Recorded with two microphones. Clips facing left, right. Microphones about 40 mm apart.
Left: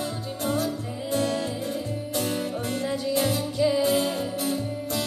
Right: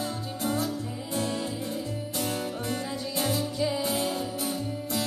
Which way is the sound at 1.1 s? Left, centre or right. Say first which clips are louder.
Left 5 dB; left.